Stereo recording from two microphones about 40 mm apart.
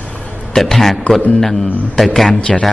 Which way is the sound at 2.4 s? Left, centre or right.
Left.